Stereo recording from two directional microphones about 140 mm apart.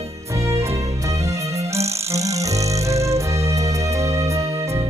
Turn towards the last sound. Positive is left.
turn(degrees=-20)  # may be behind; listen again after turning